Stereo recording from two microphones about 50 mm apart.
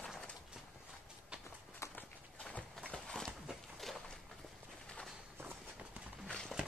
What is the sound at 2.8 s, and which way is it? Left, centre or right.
Horse, centre.